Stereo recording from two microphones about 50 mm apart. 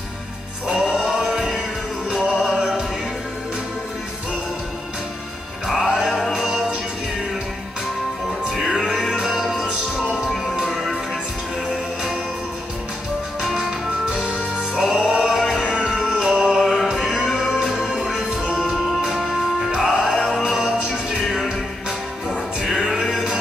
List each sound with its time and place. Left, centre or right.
1.0 s music: centre
5.7 s music: centre
8.5 s music: centre
13.4 s music: centre
19.8 s music: centre
22.3 s music: centre